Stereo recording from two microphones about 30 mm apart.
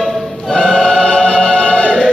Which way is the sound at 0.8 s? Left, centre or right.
Centre.